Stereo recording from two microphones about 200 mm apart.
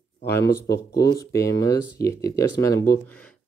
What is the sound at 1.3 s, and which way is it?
Speech, 15° left (ahead or behind).